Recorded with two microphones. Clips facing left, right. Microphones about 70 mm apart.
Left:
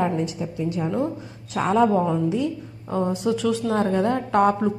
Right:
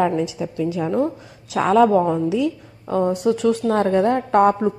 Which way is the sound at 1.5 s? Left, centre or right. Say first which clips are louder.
Right 4 dB; right.